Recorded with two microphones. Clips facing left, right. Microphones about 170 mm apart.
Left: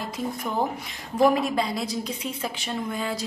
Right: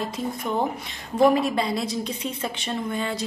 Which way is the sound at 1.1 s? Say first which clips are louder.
Right 2 dB; centre (ahead or behind).